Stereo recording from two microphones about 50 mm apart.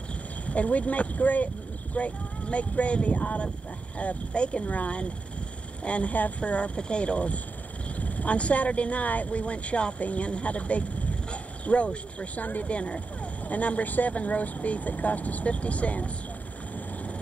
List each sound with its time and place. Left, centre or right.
0.5 s speech: left